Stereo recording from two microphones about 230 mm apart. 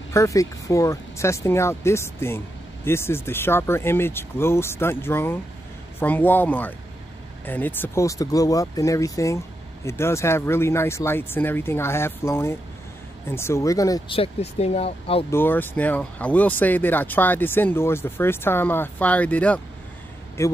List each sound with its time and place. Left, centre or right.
0.1 s speech: centre
15.3 s speech: centre